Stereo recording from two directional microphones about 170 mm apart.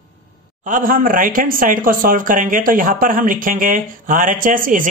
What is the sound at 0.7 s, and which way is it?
Speech, 50° right (ahead or behind).